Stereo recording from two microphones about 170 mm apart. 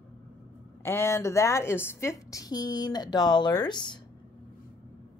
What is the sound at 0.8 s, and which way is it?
A woman's voice, 15° left (ahead or behind).